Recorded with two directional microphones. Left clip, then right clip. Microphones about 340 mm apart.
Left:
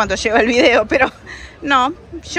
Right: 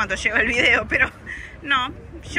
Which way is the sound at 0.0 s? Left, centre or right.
Centre.